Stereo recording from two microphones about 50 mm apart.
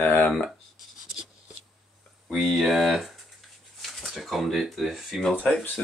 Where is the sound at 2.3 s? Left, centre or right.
Centre.